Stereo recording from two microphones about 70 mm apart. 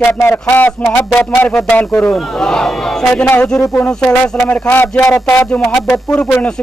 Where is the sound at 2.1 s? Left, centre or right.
Centre.